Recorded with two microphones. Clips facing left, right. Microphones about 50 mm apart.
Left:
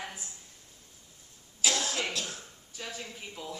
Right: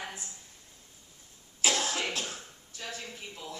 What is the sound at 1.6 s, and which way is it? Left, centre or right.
Cough, right.